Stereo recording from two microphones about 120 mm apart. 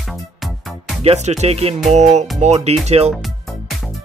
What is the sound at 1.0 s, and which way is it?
Music, 65° right (ahead or behind).